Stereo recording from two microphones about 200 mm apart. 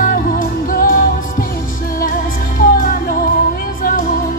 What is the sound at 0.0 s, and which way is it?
Music, 45° left (ahead or behind).